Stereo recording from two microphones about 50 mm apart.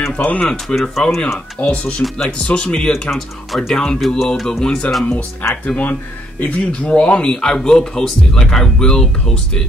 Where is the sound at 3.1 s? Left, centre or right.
Centre.